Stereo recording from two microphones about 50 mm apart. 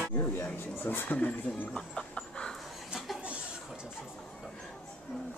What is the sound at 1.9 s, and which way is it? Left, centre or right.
Chicken, centre.